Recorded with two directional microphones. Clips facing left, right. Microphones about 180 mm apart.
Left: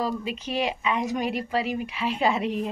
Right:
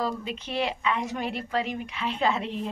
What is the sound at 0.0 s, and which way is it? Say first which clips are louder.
A woman's voice: left 2 dB; 10° left (ahead or behind).